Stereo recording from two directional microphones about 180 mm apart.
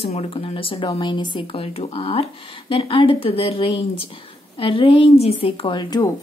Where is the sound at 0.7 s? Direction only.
25° left (ahead or behind).